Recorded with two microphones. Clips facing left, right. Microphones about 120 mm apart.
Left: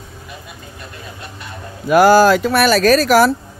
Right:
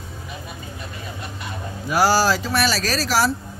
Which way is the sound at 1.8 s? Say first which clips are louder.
Left 8 dB; 55° left (ahead or behind).